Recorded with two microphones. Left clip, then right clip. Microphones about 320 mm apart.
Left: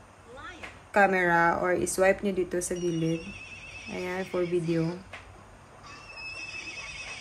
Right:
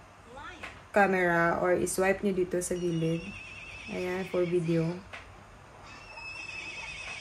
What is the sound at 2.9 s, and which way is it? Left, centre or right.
Speech, left.